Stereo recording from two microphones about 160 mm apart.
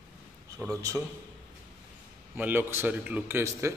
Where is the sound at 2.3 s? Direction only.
10° right (ahead or behind).